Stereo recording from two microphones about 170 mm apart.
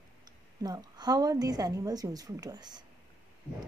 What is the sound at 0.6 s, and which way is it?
Speech, 25° right (ahead or behind).